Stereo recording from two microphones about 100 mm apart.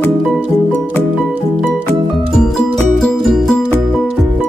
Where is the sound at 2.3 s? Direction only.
5° left (ahead or behind).